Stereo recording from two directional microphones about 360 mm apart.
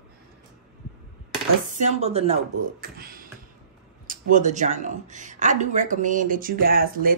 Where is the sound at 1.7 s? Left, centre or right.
Centre.